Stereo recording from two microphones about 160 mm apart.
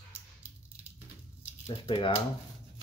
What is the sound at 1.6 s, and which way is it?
Speech, 30° left (ahead or behind).